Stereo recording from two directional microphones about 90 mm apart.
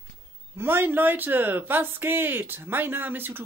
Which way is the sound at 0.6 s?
25° right (ahead or behind).